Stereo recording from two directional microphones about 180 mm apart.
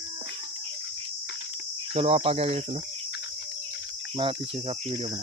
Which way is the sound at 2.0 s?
35° right (ahead or behind).